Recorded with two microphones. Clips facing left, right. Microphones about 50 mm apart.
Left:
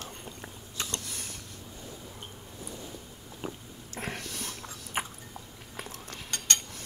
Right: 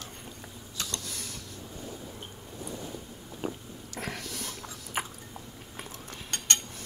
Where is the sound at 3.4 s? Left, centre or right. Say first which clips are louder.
Right 4 dB; centre.